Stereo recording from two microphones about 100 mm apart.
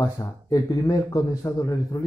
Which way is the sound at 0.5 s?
40° left (ahead or behind).